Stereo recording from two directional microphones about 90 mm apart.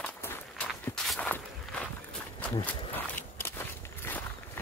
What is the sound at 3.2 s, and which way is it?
Walk, 25° left (ahead or behind).